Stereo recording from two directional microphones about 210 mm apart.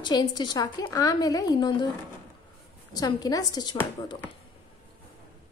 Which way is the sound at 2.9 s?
20° left (ahead or behind).